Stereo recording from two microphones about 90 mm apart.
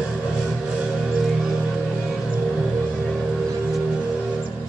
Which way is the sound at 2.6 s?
10° left (ahead or behind).